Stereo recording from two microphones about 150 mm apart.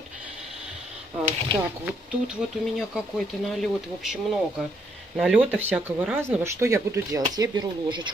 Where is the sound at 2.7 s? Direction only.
Centre (ahead or behind); by 8.0 s 30° right (ahead or behind).